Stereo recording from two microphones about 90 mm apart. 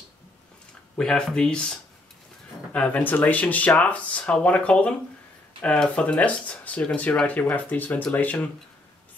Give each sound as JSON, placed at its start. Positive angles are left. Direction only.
{"t": 0.9, "sound": "speech", "side_deg": 10}